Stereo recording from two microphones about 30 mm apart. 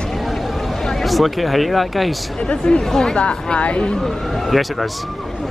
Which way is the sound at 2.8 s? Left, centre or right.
Centre.